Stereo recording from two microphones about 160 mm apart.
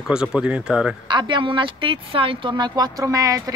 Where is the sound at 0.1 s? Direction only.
5° right (ahead or behind).